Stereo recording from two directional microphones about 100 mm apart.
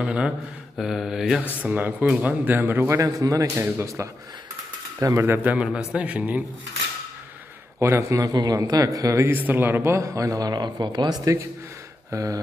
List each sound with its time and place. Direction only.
0.0 s a man's voice: 10° right (ahead or behind)
0.7 s mantra: 5° right (ahead or behind)
1.6 s a man's voice: 15° right (ahead or behind)
3.0 s a man's voice: 35° right (ahead or behind); by 6.4 s 15° right (ahead or behind)
7.8 s speech: 30° right (ahead or behind)
9.2 s speech: 20° right (ahead or behind)